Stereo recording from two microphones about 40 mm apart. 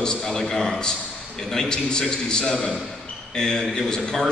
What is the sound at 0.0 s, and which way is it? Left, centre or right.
A man's voice, centre.